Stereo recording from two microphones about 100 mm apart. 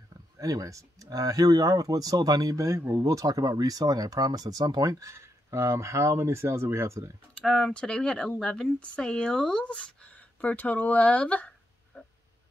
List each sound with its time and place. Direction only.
0.4 s speech: 35° right (ahead or behind)
7.4 s speech: 5° left (ahead or behind)